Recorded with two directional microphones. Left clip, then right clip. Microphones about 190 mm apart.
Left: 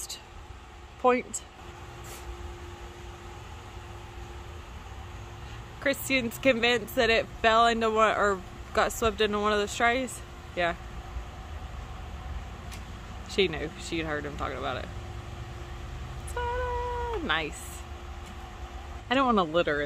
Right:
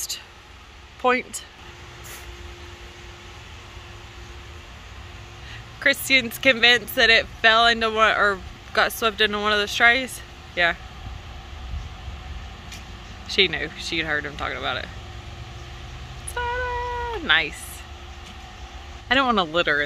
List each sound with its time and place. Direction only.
1.0 s speech: centre (ahead or behind)
5.8 s speech: centre (ahead or behind)
13.3 s speech: 5° left (ahead or behind)
16.3 s cat: centre (ahead or behind)
19.0 s speech: 5° left (ahead or behind)